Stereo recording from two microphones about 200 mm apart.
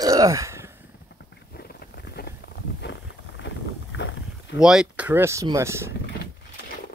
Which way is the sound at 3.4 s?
65° left (ahead or behind).